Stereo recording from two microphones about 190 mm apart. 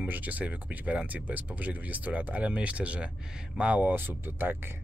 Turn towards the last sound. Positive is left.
turn(degrees=-10)  # may be behind; listen again after turning